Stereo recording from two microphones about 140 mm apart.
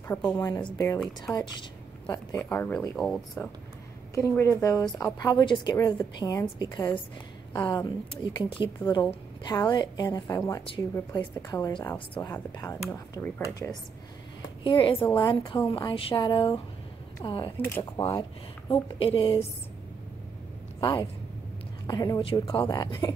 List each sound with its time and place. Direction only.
0.1 s speech: 15° left (ahead or behind)
0.5 s speech: 30° left (ahead or behind)
2.0 s a woman's voice: 15° left (ahead or behind)
14.6 s speech: 40° left (ahead or behind)
17.6 s speech: 15° left (ahead or behind)
18.7 s speech: 40° left (ahead or behind)
20.8 s a woman's voice: 30° left (ahead or behind)